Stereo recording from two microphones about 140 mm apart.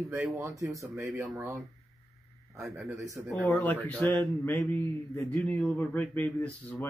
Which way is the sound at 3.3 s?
10° left (ahead or behind).